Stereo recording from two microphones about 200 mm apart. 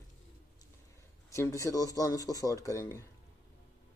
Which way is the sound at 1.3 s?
15° left (ahead or behind).